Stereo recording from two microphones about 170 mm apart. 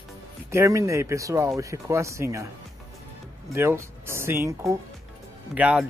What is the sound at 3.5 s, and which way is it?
Speech, 15° right (ahead or behind).